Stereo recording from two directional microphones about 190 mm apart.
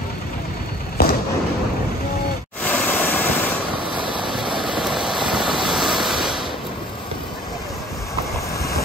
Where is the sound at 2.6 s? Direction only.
10° left (ahead or behind).